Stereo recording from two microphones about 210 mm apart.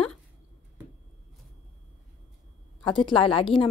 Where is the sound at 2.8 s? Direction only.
25° left (ahead or behind).